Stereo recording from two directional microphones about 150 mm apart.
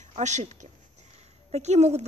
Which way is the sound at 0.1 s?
50° right (ahead or behind).